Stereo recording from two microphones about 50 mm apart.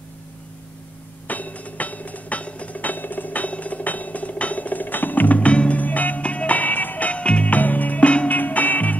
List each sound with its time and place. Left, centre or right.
1.2 s music: left